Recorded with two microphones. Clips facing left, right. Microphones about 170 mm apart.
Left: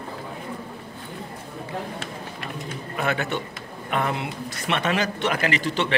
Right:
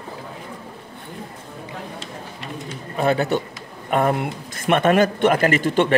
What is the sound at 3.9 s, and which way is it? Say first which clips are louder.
A man's voice: right 6 dB; 50° right (ahead or behind).